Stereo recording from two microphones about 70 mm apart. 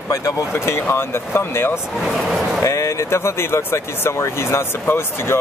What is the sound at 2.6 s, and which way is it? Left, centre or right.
Speech, left.